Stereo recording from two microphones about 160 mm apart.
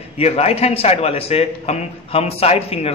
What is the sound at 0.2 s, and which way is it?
A man's voice, 40° left (ahead or behind).